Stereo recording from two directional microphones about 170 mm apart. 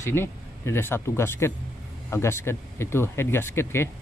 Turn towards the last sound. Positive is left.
turn(degrees=15)  # may be behind; listen again after turning